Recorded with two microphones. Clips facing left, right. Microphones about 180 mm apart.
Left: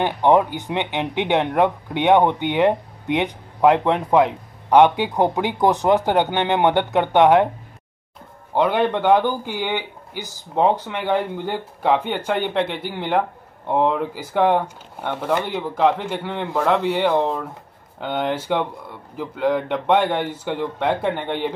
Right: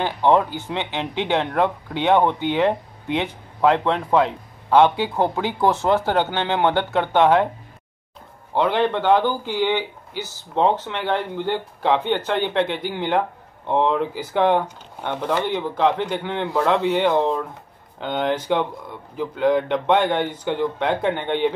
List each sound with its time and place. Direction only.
0.0 s speech: 15° left (ahead or behind)
8.5 s speech: 10° left (ahead or behind)